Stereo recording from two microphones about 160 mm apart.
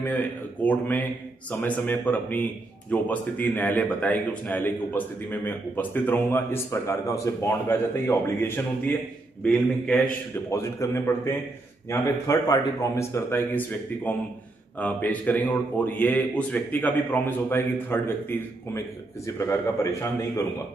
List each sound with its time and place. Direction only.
0.0 s a man's voice: 10° left (ahead or behind)